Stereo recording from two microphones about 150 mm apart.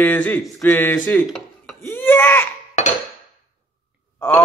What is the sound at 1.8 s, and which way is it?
Speech, 15° left (ahead or behind).